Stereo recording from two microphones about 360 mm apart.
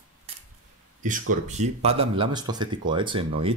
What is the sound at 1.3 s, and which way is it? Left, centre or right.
Speech, centre.